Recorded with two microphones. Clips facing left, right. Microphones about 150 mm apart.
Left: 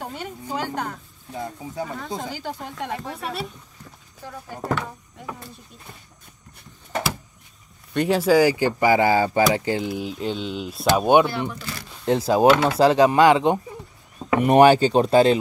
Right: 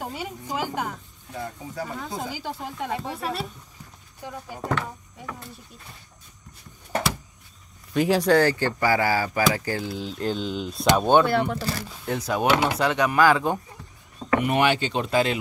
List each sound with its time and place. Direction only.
0.0 s a sound: 5° right (ahead or behind)
1.3 s speech: 20° left (ahead or behind)
2.0 s speech: centre (ahead or behind)
4.2 s speech: 15° right (ahead or behind)
4.6 s speech: 5° left (ahead or behind)
7.9 s speech: centre (ahead or behind); by 10.1 s 15° left (ahead or behind)
10.1 s speech: centre (ahead or behind)
11.0 s speech: 15° left (ahead or behind)
11.5 s speech: 40° right (ahead or behind)
12.1 s speech: 30° left (ahead or behind)
14.4 s speech: 40° left (ahead or behind)